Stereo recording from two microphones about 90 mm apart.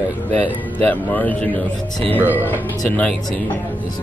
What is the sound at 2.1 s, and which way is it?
Speech, 20° right (ahead or behind).